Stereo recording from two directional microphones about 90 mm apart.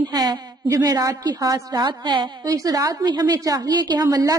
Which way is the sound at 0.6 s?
40° right (ahead or behind).